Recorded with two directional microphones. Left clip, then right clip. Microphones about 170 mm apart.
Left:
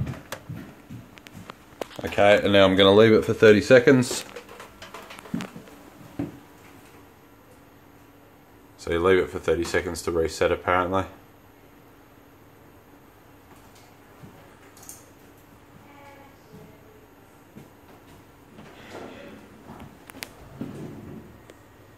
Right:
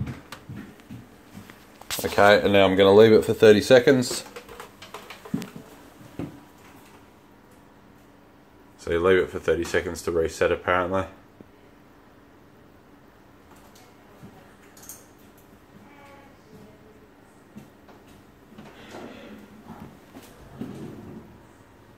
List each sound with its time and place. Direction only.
2.0 s speech: 15° right (ahead or behind)
2.5 s speech: 10° left (ahead or behind)
8.8 s speech: centre (ahead or behind)